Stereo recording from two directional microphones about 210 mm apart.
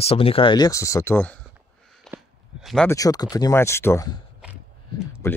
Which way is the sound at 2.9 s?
15° left (ahead or behind).